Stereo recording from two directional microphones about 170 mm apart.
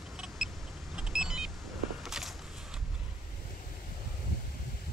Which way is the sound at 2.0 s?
Centre (ahead or behind).